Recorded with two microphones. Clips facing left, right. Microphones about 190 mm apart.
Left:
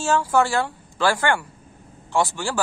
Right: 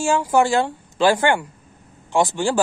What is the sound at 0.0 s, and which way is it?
Speech, 15° right (ahead or behind).